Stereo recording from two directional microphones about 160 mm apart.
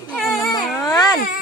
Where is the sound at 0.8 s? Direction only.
20° left (ahead or behind).